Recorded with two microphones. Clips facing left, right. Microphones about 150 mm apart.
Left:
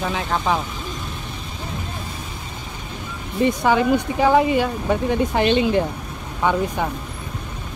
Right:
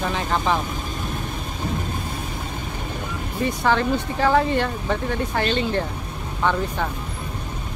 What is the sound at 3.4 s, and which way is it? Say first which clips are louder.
Speech: left 4 dB; 15° left (ahead or behind).